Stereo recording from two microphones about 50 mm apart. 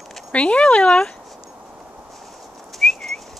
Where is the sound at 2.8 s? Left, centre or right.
Centre.